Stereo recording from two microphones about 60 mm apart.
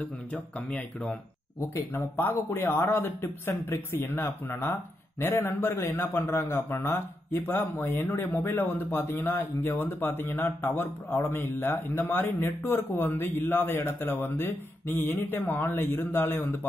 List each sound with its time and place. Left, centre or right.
0.0 s speech: left
2.0 s a man's voice: left